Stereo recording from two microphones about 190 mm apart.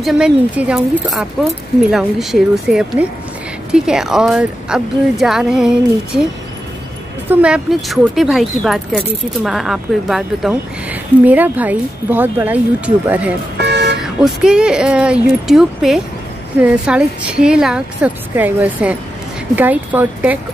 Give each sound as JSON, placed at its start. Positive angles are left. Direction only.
{"t": 0.0, "sound": "speech", "side_deg": -5}
{"t": 7.2, "sound": "speech", "side_deg": -5}
{"t": 13.6, "sound": "vehicle", "side_deg": -65}
{"t": 14.0, "sound": "a woman's voice", "side_deg": -5}